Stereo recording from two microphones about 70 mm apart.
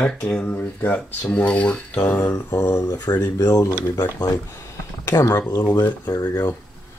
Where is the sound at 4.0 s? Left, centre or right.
Left.